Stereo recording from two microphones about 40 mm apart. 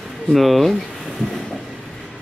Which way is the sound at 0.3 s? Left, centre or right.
Centre.